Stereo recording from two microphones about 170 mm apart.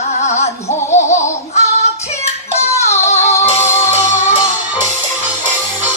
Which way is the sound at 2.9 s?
40° left (ahead or behind).